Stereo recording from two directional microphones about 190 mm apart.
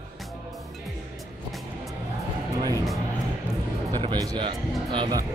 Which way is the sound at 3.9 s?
20° right (ahead or behind).